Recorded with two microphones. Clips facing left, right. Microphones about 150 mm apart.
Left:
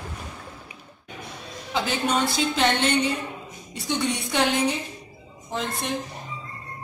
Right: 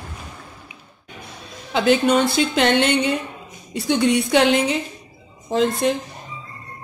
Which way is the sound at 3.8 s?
85° right.